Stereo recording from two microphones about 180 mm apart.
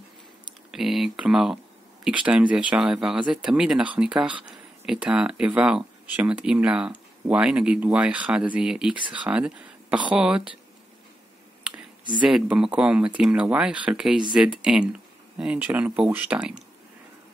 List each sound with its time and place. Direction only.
0.7 s speech: centre (ahead or behind)
12.2 s speech: 5° right (ahead or behind)